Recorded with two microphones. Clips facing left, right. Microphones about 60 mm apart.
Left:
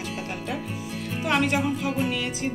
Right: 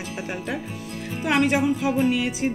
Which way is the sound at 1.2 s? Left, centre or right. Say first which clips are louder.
Right 3 dB; centre.